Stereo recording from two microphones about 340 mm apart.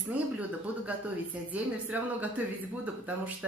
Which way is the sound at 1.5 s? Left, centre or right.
Centre.